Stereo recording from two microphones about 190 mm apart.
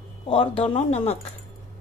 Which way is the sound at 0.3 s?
30° left (ahead or behind).